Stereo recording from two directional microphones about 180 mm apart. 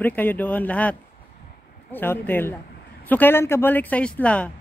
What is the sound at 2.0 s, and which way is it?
A woman's voice, 10° left (ahead or behind).